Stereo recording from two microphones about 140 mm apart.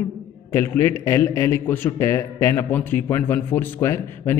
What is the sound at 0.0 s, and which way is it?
A man's voice, 15° left (ahead or behind).